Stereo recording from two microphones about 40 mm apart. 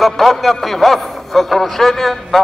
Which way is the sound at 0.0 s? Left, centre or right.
Centre.